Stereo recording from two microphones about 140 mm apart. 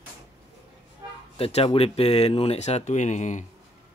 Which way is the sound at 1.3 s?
45° left (ahead or behind).